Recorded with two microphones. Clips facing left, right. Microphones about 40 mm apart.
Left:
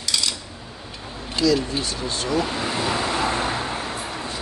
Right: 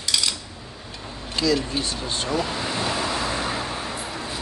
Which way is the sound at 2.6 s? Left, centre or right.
Left.